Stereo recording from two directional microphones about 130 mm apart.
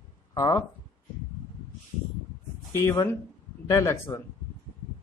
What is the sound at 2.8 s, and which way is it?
A man's voice, 20° left (ahead or behind).